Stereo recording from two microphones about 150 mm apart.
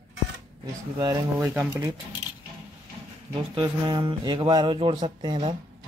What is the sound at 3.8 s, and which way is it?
Speech, 30° right (ahead or behind).